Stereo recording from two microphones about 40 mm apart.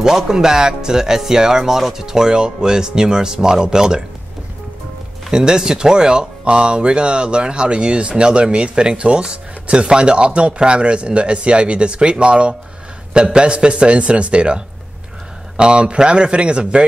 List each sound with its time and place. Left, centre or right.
0.0 s speech: centre
5.3 s speech: centre